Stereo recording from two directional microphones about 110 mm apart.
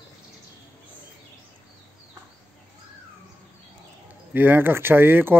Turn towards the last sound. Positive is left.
turn(degrees=-20)  # may be behind; listen again after turning